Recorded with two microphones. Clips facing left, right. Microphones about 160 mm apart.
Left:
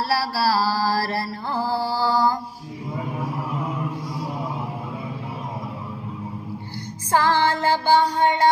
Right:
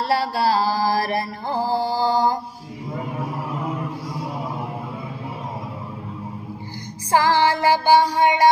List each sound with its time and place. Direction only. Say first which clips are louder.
0.1 s mantra: right 3 dB; 20° right (ahead or behind)
7.1 s mantra: right 2 dB; 10° right (ahead or behind)